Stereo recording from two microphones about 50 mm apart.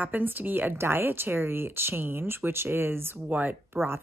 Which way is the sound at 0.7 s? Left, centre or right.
Right.